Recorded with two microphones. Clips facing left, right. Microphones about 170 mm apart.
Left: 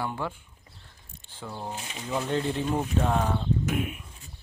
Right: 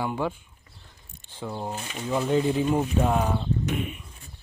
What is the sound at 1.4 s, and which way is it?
Speech, 15° right (ahead or behind).